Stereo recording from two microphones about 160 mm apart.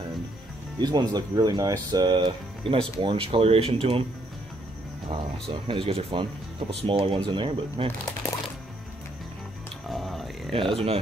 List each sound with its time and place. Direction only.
0.7 s speech: 25° right (ahead or behind)
5.1 s speech: 35° right (ahead or behind)
9.8 s a sound: centre (ahead or behind)
10.7 s speech: 35° right (ahead or behind)